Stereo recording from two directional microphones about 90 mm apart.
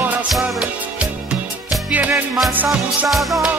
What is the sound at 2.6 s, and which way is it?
Music, centre (ahead or behind).